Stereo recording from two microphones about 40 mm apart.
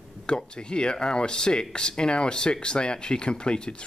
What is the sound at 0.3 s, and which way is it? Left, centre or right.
Speech, left.